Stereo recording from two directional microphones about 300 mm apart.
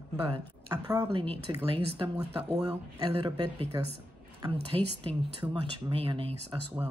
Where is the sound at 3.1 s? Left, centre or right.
Centre.